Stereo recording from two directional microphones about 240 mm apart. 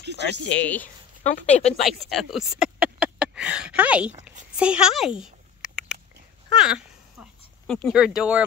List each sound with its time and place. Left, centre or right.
0.5 s speech: centre
1.2 s a woman's voice: left
1.9 s speech: centre
6.5 s speech: centre